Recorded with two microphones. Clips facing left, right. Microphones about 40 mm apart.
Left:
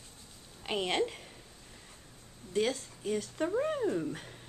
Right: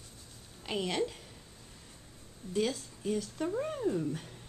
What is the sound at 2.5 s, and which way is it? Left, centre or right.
Speech, centre.